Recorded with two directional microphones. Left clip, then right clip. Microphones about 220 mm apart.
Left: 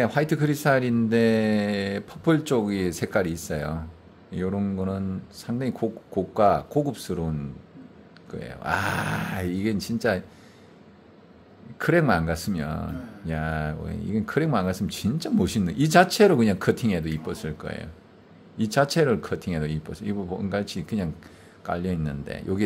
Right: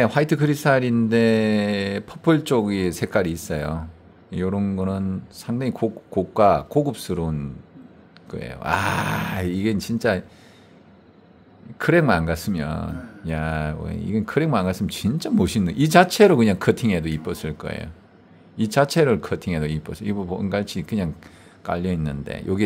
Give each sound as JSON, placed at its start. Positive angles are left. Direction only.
{"t": 0.0, "sound": "speech", "side_deg": -20}
{"t": 11.8, "sound": "speech", "side_deg": -15}